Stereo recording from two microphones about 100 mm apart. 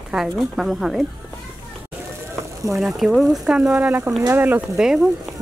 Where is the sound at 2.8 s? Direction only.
Centre (ahead or behind); by 4.6 s 15° right (ahead or behind).